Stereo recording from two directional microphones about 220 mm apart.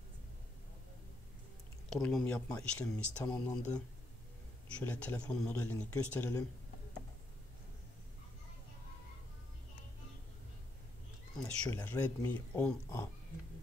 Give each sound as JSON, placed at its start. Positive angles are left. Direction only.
{"t": 2.0, "sound": "speech", "side_deg": 5}
{"t": 11.3, "sound": "speech", "side_deg": 5}